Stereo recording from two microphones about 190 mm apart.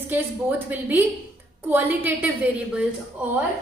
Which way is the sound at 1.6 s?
10° right (ahead or behind).